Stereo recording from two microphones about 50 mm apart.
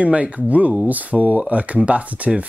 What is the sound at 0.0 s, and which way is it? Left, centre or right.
Speech, right.